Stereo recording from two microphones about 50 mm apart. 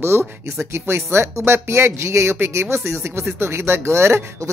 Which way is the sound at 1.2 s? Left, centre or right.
Right.